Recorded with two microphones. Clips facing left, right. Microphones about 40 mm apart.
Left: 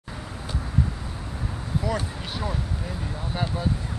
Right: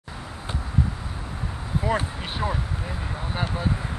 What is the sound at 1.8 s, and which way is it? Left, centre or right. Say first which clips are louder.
Speech: right 3 dB; right.